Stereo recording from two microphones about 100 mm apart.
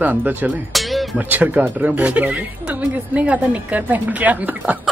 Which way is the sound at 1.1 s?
15° right (ahead or behind).